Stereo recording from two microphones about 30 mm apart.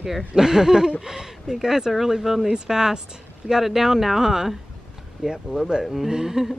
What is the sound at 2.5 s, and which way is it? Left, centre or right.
Speech, right.